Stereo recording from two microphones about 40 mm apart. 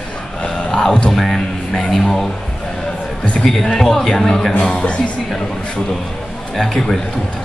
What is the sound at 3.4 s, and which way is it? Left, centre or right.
A man's voice, centre.